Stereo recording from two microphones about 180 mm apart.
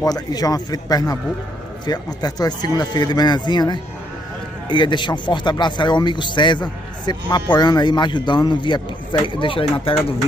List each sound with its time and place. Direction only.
0.0 s speech: 20° left (ahead or behind)